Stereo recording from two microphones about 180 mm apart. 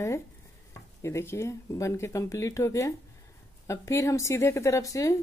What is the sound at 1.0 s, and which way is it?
Speech, 15° left (ahead or behind).